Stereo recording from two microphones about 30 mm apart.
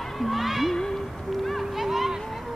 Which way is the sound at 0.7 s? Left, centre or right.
Centre.